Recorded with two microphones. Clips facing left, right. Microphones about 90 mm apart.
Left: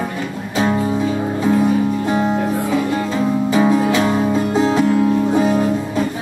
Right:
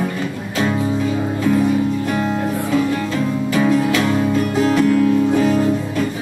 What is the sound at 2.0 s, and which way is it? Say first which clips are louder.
Music: left 2 dB; 25° left (ahead or behind).